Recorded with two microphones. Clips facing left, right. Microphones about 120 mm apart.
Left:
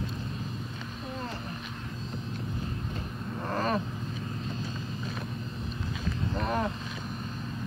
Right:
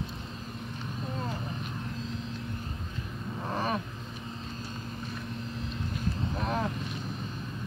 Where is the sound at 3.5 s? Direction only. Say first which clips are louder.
Left 2 dB; 5° right (ahead or behind).